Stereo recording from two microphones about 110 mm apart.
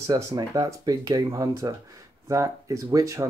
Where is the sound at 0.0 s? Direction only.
35° right (ahead or behind).